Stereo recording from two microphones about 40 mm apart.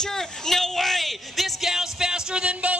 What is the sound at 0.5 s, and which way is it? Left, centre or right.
Music, centre.